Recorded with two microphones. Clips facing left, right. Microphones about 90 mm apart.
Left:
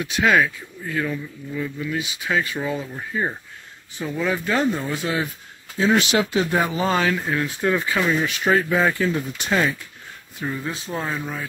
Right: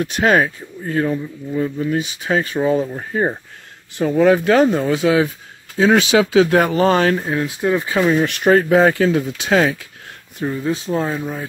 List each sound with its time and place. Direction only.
0.0 s speech: 45° right (ahead or behind)
4.0 s speech: 60° right (ahead or behind); by 5.3 s 90° right
6.3 s speech: 80° right; by 7.2 s 45° right (ahead or behind)
7.2 s speech: 25° right (ahead or behind)
7.9 s speech: 30° right (ahead or behind)
8.5 s speech: 50° right (ahead or behind)
8.7 s speech: 70° right (ahead or behind)
10.7 s speech: 25° right (ahead or behind)